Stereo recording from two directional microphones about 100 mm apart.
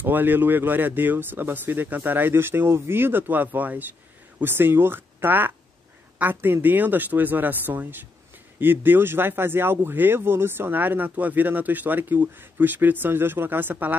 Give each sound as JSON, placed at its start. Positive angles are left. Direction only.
{"t": 0.0, "sound": "speech", "side_deg": -20}